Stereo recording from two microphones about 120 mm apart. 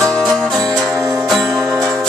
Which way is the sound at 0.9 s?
25° right (ahead or behind).